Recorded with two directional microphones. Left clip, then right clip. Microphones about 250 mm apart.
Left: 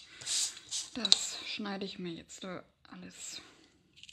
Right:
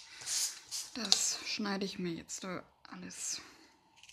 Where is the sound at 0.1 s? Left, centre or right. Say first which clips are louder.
Left 2 dB; centre.